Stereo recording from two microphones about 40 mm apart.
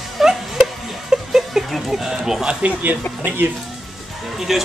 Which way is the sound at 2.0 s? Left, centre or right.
Centre.